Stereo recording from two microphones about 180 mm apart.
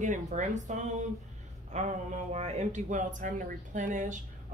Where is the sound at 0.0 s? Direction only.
45° right (ahead or behind).